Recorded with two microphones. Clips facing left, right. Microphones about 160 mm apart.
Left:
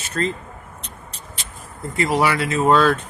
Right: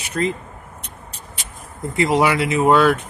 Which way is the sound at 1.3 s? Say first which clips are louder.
Even; 20° right (ahead or behind).